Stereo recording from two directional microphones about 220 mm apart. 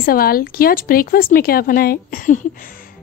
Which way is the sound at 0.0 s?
45° left (ahead or behind).